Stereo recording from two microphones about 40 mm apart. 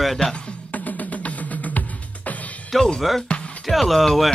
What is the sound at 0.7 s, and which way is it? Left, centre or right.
Music, left.